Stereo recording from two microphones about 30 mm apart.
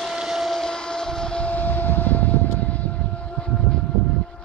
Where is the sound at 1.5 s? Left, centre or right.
Left.